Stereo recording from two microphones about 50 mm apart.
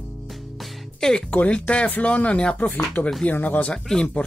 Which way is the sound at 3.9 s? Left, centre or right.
Centre.